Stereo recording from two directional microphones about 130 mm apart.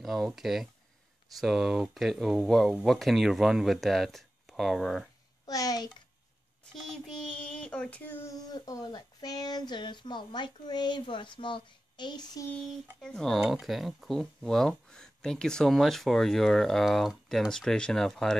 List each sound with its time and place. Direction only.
0.0 s speech: centre (ahead or behind)
5.5 s a child's voice: 30° left (ahead or behind)
6.7 s child singing: centre (ahead or behind); by 12.4 s 35° left (ahead or behind)
13.0 s speech: 5° left (ahead or behind)